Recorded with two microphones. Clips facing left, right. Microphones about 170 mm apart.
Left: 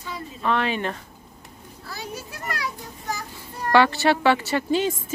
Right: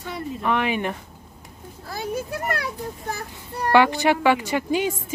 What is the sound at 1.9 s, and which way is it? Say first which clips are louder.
Speech: right 8 dB; 50° right (ahead or behind).